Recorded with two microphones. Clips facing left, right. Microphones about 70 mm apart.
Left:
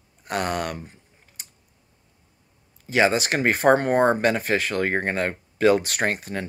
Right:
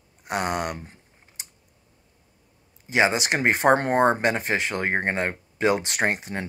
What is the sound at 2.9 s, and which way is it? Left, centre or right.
Speech, right.